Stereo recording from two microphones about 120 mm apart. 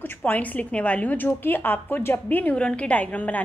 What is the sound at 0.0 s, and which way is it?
A woman's voice, 15° left (ahead or behind).